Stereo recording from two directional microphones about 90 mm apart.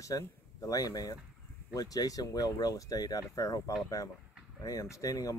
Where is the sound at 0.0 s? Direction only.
40° left (ahead or behind).